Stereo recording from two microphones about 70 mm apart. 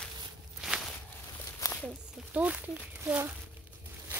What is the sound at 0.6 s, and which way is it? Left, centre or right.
Walk, centre.